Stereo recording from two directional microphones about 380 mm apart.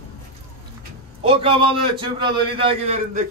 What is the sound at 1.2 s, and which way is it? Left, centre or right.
A man's voice, centre.